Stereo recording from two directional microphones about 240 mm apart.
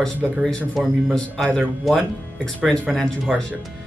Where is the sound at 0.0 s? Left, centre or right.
Centre.